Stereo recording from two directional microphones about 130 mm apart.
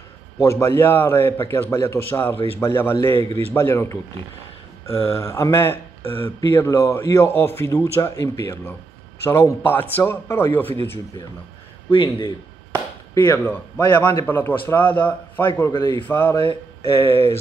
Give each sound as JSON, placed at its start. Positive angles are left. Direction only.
{"t": 0.4, "sound": "a man's voice", "side_deg": 20}
{"t": 4.9, "sound": "speech", "side_deg": 50}
{"t": 5.2, "sound": "a man's voice", "side_deg": 20}
{"t": 11.9, "sound": "a man's voice", "side_deg": 40}
{"t": 13.1, "sound": "speech", "side_deg": 30}
{"t": 13.4, "sound": "a man's voice", "side_deg": 15}